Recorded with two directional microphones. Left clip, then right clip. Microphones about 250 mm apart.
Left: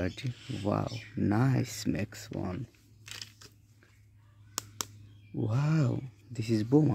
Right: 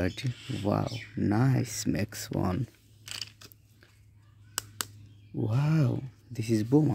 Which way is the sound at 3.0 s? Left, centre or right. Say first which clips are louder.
Right 5 dB; right.